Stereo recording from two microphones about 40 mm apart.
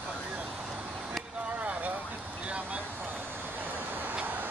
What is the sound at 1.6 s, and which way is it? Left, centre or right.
Vehicle, right.